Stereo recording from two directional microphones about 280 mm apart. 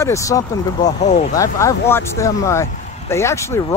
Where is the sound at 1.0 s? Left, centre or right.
Left.